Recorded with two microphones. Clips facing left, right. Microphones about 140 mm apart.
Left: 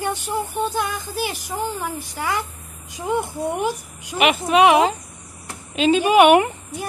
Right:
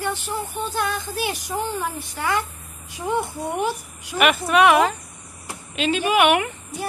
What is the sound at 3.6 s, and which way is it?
Speech, 10° left (ahead or behind).